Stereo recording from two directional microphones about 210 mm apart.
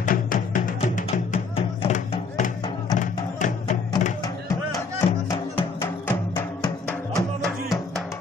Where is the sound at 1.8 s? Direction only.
35° left (ahead or behind).